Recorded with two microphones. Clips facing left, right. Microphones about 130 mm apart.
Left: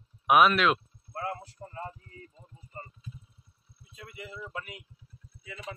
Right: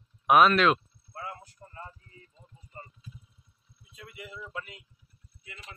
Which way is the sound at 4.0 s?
30° left (ahead or behind).